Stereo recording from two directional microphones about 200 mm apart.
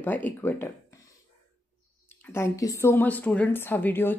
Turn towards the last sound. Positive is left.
turn(degrees=10)  # may be behind; listen again after turning